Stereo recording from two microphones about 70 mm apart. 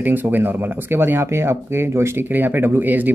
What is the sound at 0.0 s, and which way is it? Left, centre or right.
Speech, right.